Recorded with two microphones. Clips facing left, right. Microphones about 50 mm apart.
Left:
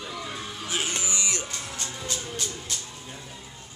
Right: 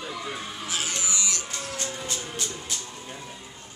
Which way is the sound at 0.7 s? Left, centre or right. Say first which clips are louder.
Left 1 dB; left.